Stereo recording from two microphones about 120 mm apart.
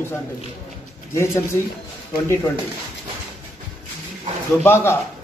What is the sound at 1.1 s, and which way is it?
Speech, 20° left (ahead or behind).